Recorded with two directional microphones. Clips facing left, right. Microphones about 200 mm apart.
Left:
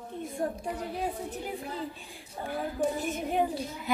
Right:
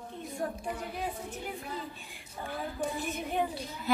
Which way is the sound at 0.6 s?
35° left (ahead or behind).